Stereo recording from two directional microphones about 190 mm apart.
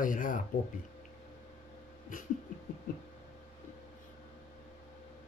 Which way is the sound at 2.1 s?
45° left (ahead or behind).